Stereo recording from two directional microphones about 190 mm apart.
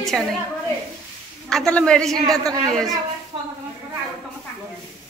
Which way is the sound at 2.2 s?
20° right (ahead or behind).